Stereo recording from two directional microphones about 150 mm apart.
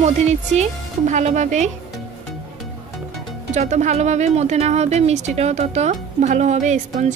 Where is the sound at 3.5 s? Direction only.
50° right (ahead or behind).